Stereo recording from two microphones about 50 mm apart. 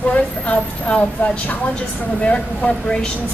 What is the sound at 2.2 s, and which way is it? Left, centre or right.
Speech, left.